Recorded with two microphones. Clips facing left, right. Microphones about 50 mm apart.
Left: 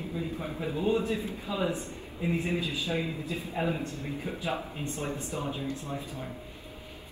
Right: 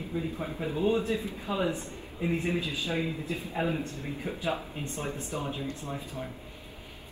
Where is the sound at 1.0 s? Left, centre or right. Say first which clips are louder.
Even; right.